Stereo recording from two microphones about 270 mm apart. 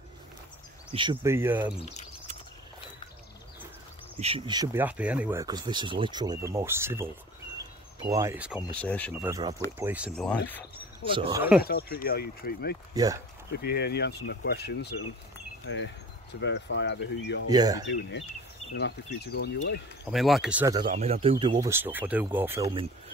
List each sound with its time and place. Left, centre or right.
0.9 s speech: centre
1.8 s speech: left
4.2 s speech: centre
9.2 s speech: centre
11.1 s speech: centre
11.6 s speech: left
12.9 s speech: centre
13.6 s speech: left
17.5 s speech: centre
18.8 s speech: left
20.1 s speech: centre